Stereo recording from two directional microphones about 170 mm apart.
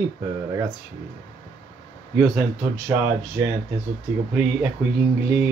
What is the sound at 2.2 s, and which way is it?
Speech, 10° right (ahead or behind).